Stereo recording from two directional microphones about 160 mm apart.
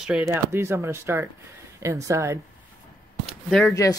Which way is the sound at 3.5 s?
Centre (ahead or behind).